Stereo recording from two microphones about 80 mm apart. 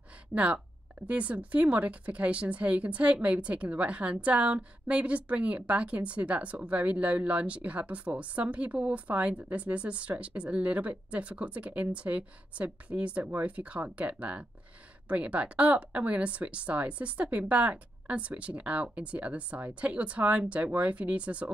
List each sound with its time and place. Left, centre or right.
0.3 s a woman's voice: centre